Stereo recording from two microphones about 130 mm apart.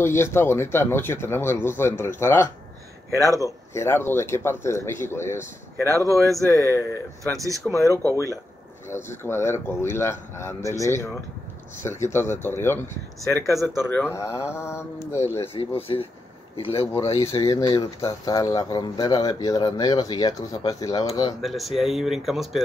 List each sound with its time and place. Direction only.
0.0 s speech: 20° left (ahead or behind)
3.1 s speech: 25° right (ahead or behind)
3.3 s speech: 25° left (ahead or behind)
5.9 s speech: 25° right (ahead or behind)
6.5 s speech: 25° left (ahead or behind)
7.3 s speech: 25° right (ahead or behind)
8.8 s speech: 20° left (ahead or behind)
15.5 s speech: 45° left (ahead or behind)
17.3 s speech: 30° left (ahead or behind)
21.4 s speech: centre (ahead or behind)